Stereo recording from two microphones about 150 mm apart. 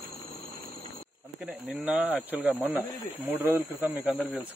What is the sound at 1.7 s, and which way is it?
Speech, 5° right (ahead or behind).